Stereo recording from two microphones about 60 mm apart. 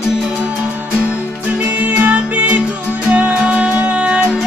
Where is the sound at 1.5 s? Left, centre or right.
Right.